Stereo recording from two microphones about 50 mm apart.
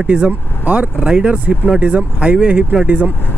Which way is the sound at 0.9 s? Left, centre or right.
Centre.